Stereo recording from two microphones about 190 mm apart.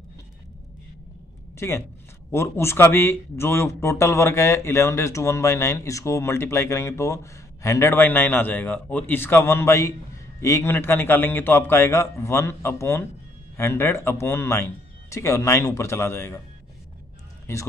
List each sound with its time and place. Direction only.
1.6 s speech: 15° left (ahead or behind)
17.5 s speech: 15° left (ahead or behind)